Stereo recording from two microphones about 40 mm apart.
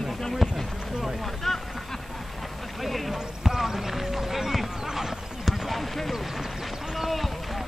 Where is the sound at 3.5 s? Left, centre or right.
Centre.